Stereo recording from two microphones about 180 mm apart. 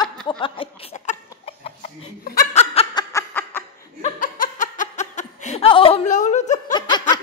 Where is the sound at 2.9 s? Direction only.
15° left (ahead or behind).